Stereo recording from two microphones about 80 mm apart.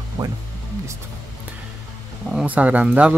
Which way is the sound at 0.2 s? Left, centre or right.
Right.